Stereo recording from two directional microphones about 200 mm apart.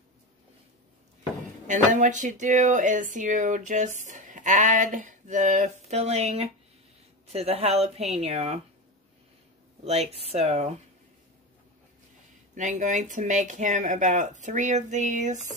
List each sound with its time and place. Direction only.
1.7 s speech: 40° right (ahead or behind)
9.8 s speech: 30° right (ahead or behind)
12.5 s speech: 40° right (ahead or behind)